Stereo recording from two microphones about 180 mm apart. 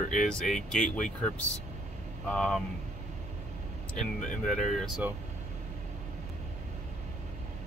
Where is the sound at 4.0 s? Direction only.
45° left (ahead or behind).